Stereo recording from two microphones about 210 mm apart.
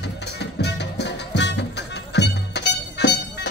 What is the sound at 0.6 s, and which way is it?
Music, 55° left (ahead or behind).